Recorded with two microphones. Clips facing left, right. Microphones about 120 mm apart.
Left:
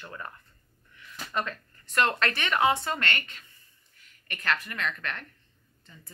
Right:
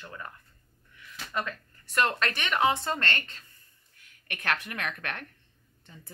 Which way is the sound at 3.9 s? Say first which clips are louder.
Right 1 dB; 60° right (ahead or behind).